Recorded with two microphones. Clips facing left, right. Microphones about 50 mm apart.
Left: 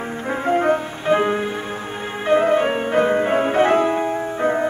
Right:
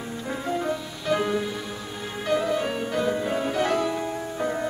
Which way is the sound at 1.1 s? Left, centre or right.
Left.